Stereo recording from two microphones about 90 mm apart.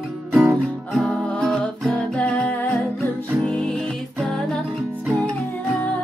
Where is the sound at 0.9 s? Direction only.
5° left (ahead or behind).